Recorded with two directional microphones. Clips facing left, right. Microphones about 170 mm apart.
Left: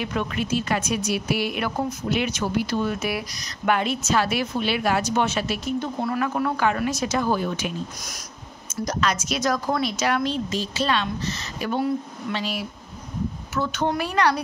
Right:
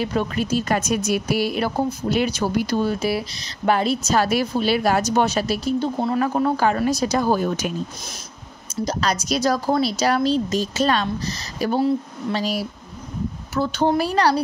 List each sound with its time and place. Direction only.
0.0 s speech: 35° right (ahead or behind)